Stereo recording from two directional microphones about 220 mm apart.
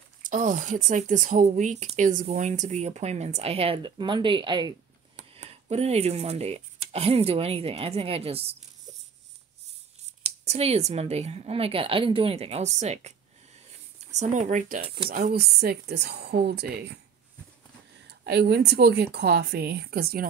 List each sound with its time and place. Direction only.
0.2 s speech: 35° right (ahead or behind)
10.2 s speech: 30° right (ahead or behind)
14.1 s speech: 35° right (ahead or behind)
18.2 s speech: 50° right (ahead or behind)